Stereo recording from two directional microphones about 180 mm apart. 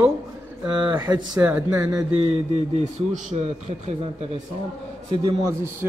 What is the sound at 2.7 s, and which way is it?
Speech, 40° right (ahead or behind).